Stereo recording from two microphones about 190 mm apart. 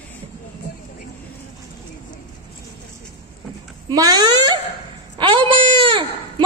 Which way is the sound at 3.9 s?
20° right (ahead or behind).